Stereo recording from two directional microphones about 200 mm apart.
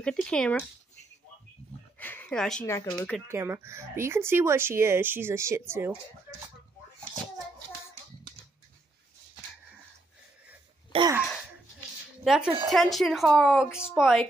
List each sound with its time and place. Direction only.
0.0 s a woman's voice: 5° left (ahead or behind)
2.0 s a woman's voice: 10° left (ahead or behind)
3.3 s speech: 10° right (ahead or behind)
10.9 s a sound: 25° right (ahead or behind)
11.1 s a sound: centre (ahead or behind)
12.3 s a woman's voice: 5° right (ahead or behind)